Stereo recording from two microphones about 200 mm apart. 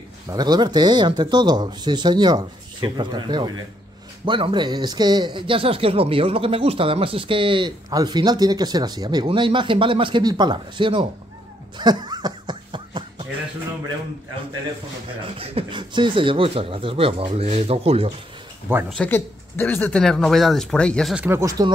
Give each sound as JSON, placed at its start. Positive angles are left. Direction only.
{"t": 0.3, "sound": "speech", "side_deg": -20}
{"t": 11.8, "sound": "a sound", "side_deg": -20}
{"t": 15.3, "sound": "speech", "side_deg": -30}
{"t": 18.9, "sound": "speech", "side_deg": 5}